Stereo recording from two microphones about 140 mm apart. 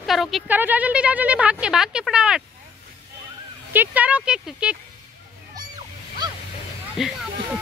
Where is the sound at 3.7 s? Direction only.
10° right (ahead or behind).